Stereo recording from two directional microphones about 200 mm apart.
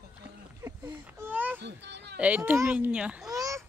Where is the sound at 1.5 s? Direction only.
60° right (ahead or behind).